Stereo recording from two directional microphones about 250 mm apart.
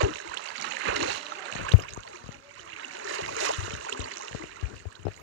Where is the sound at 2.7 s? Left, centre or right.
Right.